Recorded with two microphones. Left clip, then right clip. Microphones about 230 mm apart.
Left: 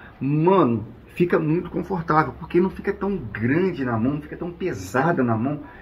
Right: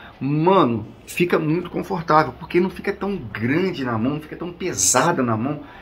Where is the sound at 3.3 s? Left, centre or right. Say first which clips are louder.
Right 1 dB; centre.